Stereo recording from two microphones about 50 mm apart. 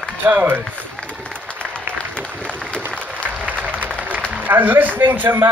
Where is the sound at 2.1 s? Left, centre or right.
Left.